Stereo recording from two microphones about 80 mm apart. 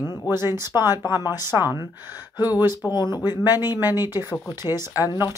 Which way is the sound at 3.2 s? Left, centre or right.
Left.